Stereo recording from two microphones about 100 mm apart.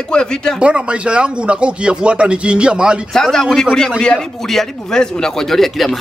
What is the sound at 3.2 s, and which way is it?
Speech, 5° left (ahead or behind).